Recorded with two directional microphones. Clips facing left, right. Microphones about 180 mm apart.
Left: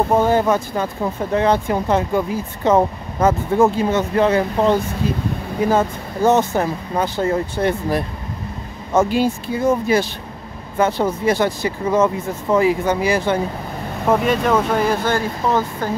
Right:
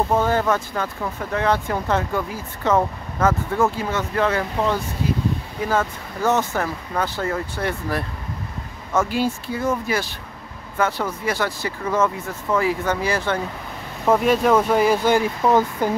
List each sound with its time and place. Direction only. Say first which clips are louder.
0.1 s speech: left 4 dB; 15° left (ahead or behind)
14.2 s speech: even; 5° right (ahead or behind)